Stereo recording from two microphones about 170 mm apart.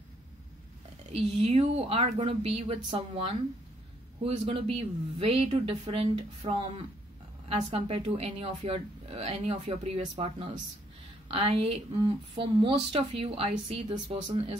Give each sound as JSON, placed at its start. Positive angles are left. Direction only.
{"t": 1.1, "sound": "speech", "side_deg": -40}